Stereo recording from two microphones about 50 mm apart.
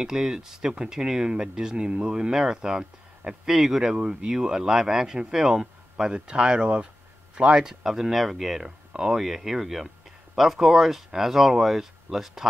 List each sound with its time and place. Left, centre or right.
0.0 s speech: centre
7.8 s speech: centre